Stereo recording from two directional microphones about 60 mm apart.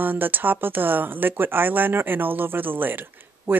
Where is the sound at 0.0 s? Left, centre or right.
Right.